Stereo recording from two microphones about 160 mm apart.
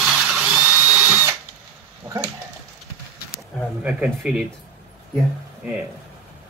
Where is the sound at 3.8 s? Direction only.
5° right (ahead or behind).